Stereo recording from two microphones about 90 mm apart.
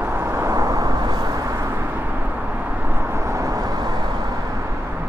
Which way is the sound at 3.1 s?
35° right (ahead or behind).